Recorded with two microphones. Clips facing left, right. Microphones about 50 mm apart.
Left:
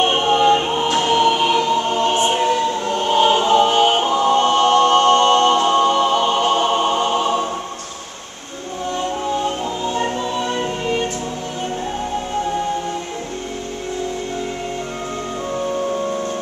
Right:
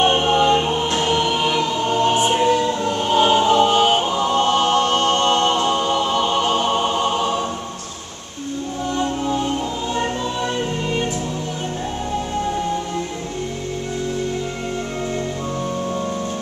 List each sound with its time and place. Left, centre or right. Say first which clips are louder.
0.0 s a capella: right 1 dB; centre
0.3 s choir: left 1 dB; centre
2.0 s choir: even; centre
2.2 s choir: even; centre
3.1 s music: left 1 dB; centre
4.4 s a capella: left 2 dB; centre
5.6 s music: left 4 dB; centre
9.9 s music: left 1 dB; centre